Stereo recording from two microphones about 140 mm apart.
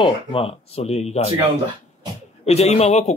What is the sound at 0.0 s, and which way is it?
A man's voice, 40° left (ahead or behind).